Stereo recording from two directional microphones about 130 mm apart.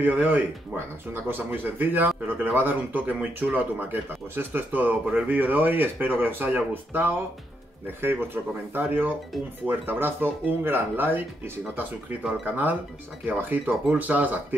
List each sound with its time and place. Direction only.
0.0 s speech: 15° right (ahead or behind)